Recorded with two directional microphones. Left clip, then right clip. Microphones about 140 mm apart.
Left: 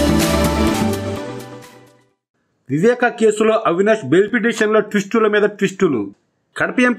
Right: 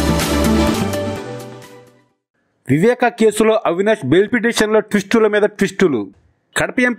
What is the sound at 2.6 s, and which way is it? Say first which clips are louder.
A man's voice: right 1 dB; 45° right (ahead or behind).